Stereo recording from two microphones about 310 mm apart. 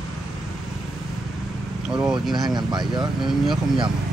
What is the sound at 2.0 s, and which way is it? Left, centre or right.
Speech, centre.